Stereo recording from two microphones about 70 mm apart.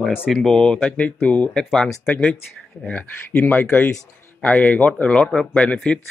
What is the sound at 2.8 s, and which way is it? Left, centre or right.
Speech, left.